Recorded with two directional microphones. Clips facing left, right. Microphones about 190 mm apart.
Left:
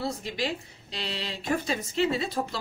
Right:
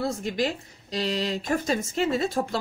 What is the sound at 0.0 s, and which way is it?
Speech, 45° right (ahead or behind).